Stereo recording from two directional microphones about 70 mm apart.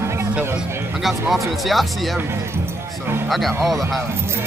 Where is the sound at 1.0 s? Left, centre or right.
Centre.